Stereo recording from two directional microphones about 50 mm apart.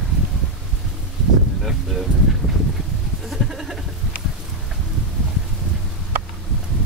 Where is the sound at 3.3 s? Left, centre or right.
Centre.